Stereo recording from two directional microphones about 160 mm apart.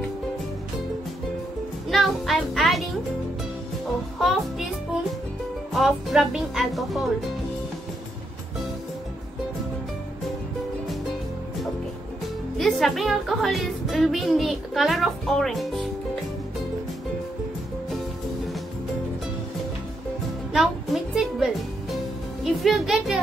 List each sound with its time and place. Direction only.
1.9 s music: centre (ahead or behind)
4.2 s music: centre (ahead or behind)
5.7 s speech: centre (ahead or behind)
12.5 s speech: centre (ahead or behind)
20.5 s music: centre (ahead or behind)